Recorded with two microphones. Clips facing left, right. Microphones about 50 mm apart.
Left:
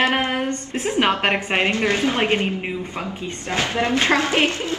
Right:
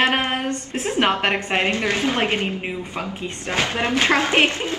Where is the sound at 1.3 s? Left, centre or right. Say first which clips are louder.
Left 1 dB; centre.